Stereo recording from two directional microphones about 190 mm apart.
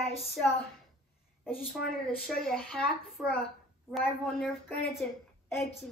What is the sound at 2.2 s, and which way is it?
A child's voice, centre (ahead or behind).